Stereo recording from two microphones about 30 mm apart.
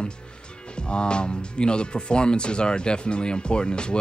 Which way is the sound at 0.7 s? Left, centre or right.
Left.